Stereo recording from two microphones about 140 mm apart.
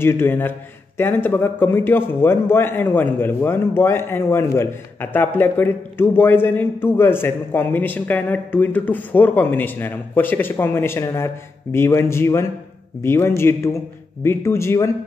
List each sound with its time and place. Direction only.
0.0 s a man's voice: 15° left (ahead or behind)